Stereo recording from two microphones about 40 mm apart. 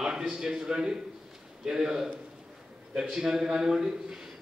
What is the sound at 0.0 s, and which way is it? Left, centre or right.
A man's voice, centre.